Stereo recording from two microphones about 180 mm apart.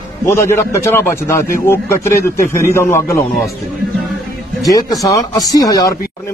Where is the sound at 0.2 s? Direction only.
15° left (ahead or behind).